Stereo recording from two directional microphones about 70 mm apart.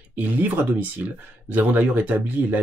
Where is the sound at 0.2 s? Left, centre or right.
Right.